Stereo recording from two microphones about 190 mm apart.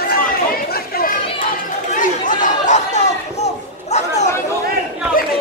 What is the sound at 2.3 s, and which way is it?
Chatter, 40° left (ahead or behind).